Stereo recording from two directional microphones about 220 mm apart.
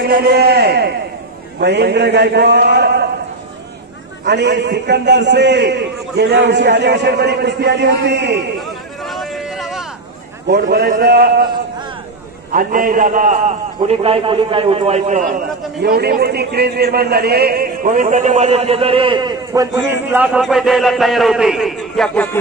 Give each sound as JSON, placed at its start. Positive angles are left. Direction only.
{"t": 0.0, "sound": "a man's voice", "side_deg": -45}
{"t": 4.2, "sound": "a man's voice", "side_deg": -50}
{"t": 9.1, "sound": "a sound", "side_deg": 0}
{"t": 10.5, "sound": "a man's voice", "side_deg": -45}
{"t": 12.5, "sound": "a man's voice", "side_deg": -40}
{"t": 15.8, "sound": "a man's voice", "side_deg": -45}